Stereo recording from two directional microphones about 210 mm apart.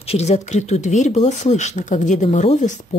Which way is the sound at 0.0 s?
30° left (ahead or behind).